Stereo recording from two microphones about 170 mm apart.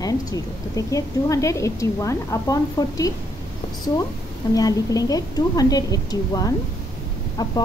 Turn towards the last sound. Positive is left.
turn(degrees=20)  # may be behind; listen again after turning